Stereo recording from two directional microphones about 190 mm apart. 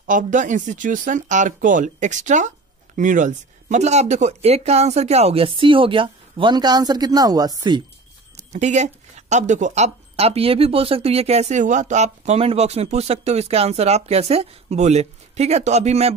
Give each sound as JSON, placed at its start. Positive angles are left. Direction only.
{"t": 0.0, "sound": "speech", "side_deg": -40}
{"t": 8.4, "sound": "speech", "side_deg": -35}